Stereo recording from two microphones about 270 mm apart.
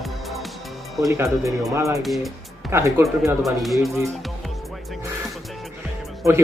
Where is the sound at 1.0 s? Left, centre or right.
Centre.